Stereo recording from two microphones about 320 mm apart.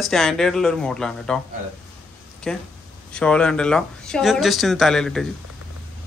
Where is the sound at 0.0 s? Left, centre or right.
Centre.